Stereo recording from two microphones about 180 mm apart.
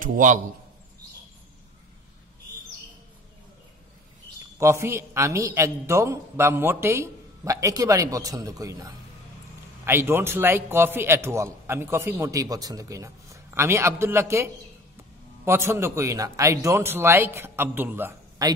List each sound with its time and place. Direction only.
0.0 s a man's voice: 45° right (ahead or behind)
4.6 s a man's voice: 15° right (ahead or behind)